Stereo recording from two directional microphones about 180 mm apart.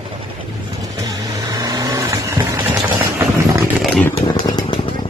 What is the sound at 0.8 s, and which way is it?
Vehicle, 20° right (ahead or behind).